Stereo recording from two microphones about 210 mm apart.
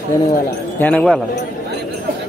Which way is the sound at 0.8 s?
5° left (ahead or behind).